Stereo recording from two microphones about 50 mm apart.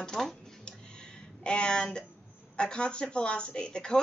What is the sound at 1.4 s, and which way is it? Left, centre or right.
Speech, centre.